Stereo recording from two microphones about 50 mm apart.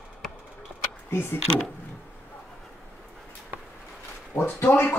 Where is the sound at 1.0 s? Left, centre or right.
Left.